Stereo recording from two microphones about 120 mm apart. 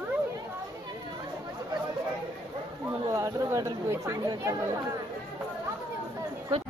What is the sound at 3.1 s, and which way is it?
Chatter, 25° right (ahead or behind).